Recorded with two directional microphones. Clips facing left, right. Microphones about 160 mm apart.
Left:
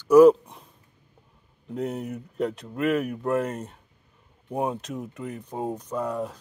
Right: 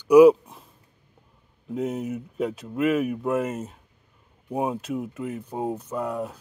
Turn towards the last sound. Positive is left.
turn(degrees=-5)  # may be behind; listen again after turning